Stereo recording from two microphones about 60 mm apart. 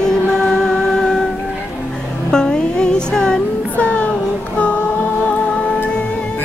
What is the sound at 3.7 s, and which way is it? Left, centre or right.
Music, left.